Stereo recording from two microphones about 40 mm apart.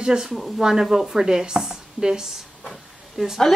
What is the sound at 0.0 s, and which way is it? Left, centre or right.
Speech, centre.